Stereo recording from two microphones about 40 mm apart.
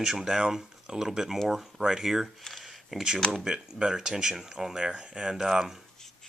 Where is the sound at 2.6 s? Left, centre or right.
Centre.